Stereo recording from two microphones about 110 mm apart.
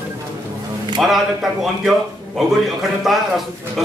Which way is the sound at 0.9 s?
5° right (ahead or behind).